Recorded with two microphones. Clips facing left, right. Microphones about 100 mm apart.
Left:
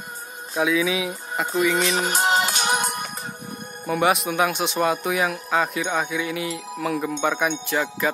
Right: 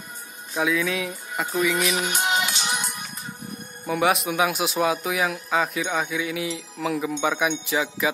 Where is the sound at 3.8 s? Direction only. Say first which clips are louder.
Left 1 dB; centre (ahead or behind).